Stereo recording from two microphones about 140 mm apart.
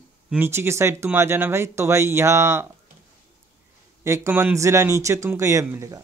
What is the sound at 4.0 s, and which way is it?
Speech, 20° right (ahead or behind).